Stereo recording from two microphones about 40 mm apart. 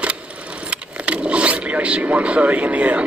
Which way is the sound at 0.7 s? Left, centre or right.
Right.